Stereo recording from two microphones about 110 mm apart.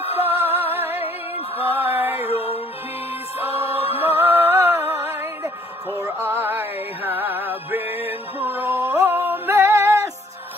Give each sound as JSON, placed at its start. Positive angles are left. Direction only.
{"t": 0.4, "sound": "music", "side_deg": -20}